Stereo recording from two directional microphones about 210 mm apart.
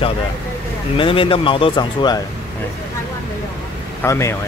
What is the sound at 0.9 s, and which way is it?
Speech, 25° left (ahead or behind).